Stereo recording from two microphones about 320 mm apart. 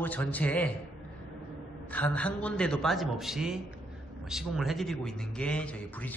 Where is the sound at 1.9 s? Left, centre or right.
Centre.